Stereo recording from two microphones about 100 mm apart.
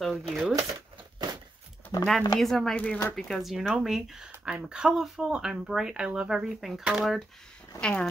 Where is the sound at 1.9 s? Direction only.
40° left (ahead or behind).